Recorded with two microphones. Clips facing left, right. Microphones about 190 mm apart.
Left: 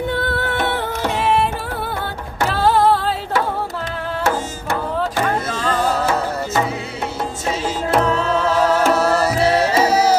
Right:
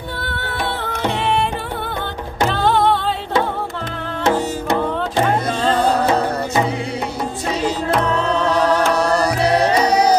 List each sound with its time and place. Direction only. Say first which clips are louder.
1.0 s music: left 1 dB; 5° left (ahead or behind)
2.5 s music: left 2 dB; 5° left (ahead or behind)
4.2 s music: right 5 dB; 20° right (ahead or behind)
7.6 s music: left 1 dB; 5° left (ahead or behind)